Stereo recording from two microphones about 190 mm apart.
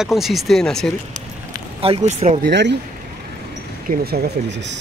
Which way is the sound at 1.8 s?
35° right (ahead or behind).